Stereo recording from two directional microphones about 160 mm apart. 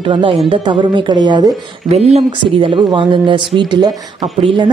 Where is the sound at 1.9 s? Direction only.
40° right (ahead or behind).